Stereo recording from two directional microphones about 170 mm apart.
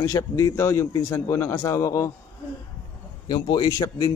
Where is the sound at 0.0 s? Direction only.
20° left (ahead or behind).